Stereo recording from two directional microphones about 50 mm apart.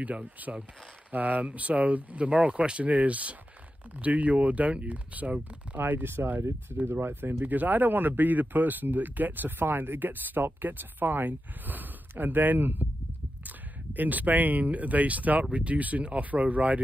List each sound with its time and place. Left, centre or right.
0.0 s speech: right
5.8 s speech: right
7.4 s speech: right